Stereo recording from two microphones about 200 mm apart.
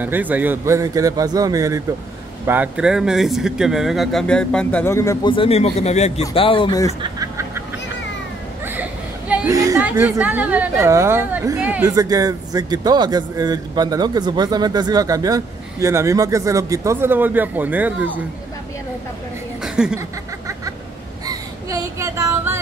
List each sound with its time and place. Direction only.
0.0 s a woman's voice: 10° right (ahead or behind); by 6.9 s 20° left (ahead or behind)
7.0 s fowl: 15° right (ahead or behind)
9.3 s a sound: 5° right (ahead or behind)
9.6 s a woman's voice: 15° right (ahead or behind)
19.6 s chuckle: 5° right (ahead or behind)
21.3 s a sound: 15° right (ahead or behind)